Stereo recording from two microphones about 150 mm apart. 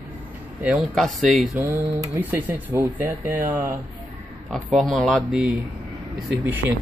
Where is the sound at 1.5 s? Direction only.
15° right (ahead or behind).